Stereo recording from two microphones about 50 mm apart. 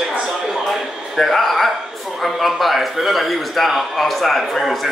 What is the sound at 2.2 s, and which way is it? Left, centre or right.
A man's voice, centre.